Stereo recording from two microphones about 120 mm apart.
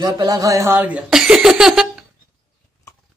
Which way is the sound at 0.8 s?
10° right (ahead or behind).